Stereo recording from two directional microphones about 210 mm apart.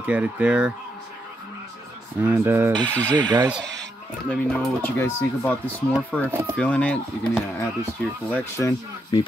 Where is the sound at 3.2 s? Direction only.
20° right (ahead or behind).